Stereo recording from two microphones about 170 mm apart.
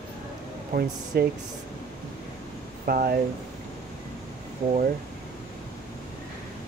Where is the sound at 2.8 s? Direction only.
60° right (ahead or behind).